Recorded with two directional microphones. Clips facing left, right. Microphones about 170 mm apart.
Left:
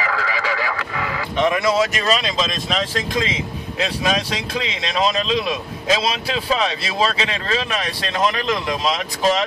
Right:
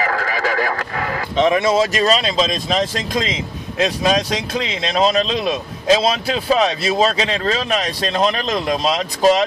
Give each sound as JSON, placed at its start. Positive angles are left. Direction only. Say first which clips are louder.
{"t": 0.0, "sound": "radio", "louder": "right 3 dB", "side_deg": -45}
{"t": 1.3, "sound": "speech", "louder": "right 3 dB", "side_deg": -25}